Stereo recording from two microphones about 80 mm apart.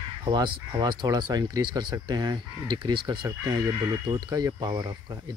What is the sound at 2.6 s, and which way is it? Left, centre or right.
Speech, right.